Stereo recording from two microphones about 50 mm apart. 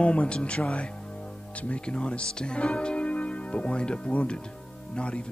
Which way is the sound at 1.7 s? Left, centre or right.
Centre.